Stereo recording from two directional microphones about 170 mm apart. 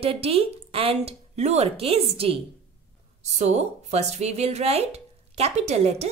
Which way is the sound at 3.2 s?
40° right (ahead or behind).